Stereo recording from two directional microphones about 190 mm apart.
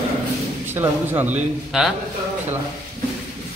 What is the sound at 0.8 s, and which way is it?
A man's voice, 10° right (ahead or behind).